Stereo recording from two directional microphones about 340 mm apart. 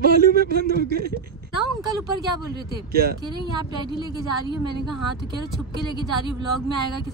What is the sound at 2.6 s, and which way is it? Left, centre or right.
Speech, right.